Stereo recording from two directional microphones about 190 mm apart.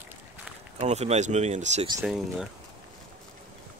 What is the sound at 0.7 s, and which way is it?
Speech, 35° right (ahead or behind).